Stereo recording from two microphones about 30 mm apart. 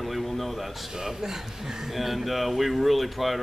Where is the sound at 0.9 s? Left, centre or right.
Centre.